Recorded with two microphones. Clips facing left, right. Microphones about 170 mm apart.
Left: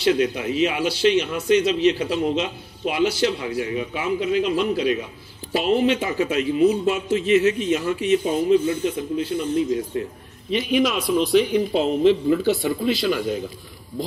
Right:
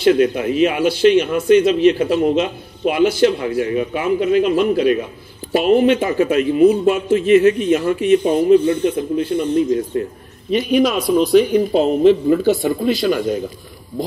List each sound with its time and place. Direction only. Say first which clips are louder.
0.0 s a man's voice: right 6 dB; 50° right (ahead or behind)